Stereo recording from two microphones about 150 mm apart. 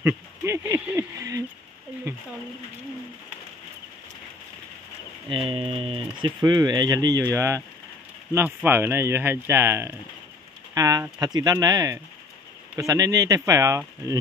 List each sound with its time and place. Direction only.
0.0 s speech: 15° right (ahead or behind)
5.3 s speech: 35° right (ahead or behind)
6.4 s speech: 25° right (ahead or behind)